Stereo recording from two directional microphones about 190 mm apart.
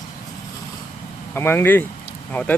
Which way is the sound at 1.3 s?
10° left (ahead or behind).